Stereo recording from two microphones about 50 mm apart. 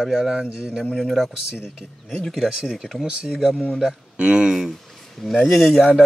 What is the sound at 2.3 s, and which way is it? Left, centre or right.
Speech, centre.